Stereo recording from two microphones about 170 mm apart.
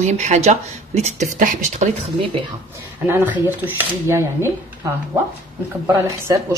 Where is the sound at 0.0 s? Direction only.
40° right (ahead or behind).